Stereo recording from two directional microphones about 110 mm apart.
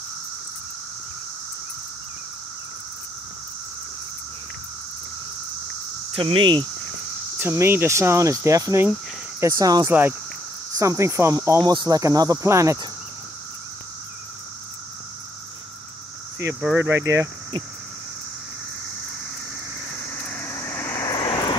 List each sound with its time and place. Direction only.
6.1 s speech: 50° right (ahead or behind)
7.3 s speech: 20° right (ahead or behind)
9.5 s cricket: 35° right (ahead or behind)
9.8 s speech: 20° right (ahead or behind)
11.6 s cricket: 40° right (ahead or behind)
16.7 s speech: 25° right (ahead or behind)
19.9 s a sound: 15° left (ahead or behind)
20.5 s vehicle: 25° left (ahead or behind)
21.0 s vehicle: 40° left (ahead or behind)